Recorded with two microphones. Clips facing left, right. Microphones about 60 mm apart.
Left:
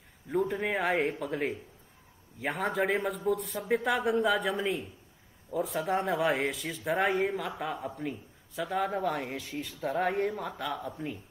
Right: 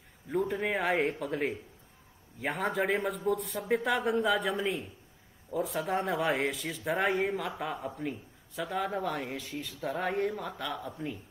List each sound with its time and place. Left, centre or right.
0.3 s a man's voice: centre